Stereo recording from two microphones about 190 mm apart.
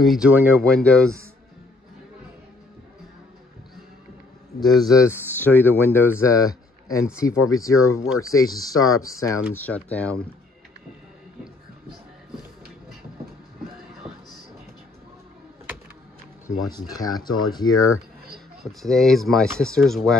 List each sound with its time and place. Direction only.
0.0 s speech: centre (ahead or behind)
4.6 s speech: centre (ahead or behind)
5.0 s speech: 10° left (ahead or behind)
14.0 s music: centre (ahead or behind)
16.7 s speech: 20° left (ahead or behind)
18.6 s speech: centre (ahead or behind)